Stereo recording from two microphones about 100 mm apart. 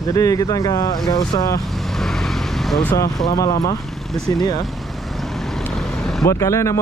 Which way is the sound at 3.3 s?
40° left (ahead or behind).